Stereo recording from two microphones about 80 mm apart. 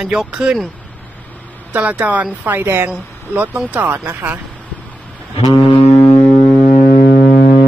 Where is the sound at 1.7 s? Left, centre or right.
Centre.